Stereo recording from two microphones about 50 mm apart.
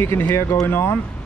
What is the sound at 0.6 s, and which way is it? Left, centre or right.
Speech, left.